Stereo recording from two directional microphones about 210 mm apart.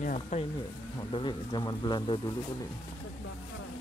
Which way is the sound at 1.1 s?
20° left (ahead or behind).